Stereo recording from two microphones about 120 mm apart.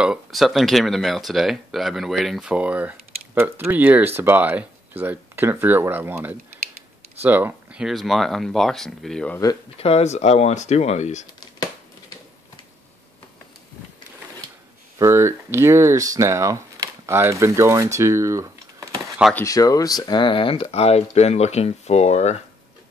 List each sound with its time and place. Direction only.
0.0 s speech: 5° right (ahead or behind)
2.5 s speech: 10° right (ahead or behind)
7.8 s speech: centre (ahead or behind)
9.8 s speech: 55° left (ahead or behind); by 11.2 s 75° left (ahead or behind)
15.0 s speech: 20° right (ahead or behind)
19.3 s speech: 25° left (ahead or behind); by 22.4 s 70° left (ahead or behind)